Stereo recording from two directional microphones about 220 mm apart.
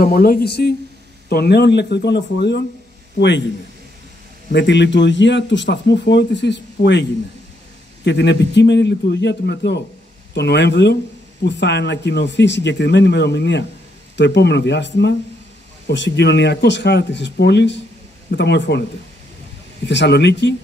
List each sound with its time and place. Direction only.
0.0 s speech: 40° left (ahead or behind)
4.5 s speech: 55° left (ahead or behind)
19.9 s speech: 50° left (ahead or behind)